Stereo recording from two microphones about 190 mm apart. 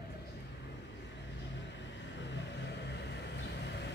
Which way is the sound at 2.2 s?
65° left (ahead or behind).